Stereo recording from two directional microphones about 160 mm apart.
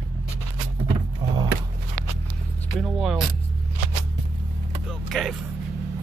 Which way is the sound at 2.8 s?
Centre (ahead or behind).